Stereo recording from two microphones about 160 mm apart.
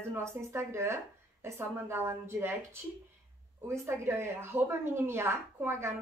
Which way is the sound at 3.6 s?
15° right (ahead or behind).